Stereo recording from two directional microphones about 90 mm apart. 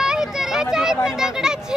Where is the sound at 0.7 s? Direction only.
5° right (ahead or behind).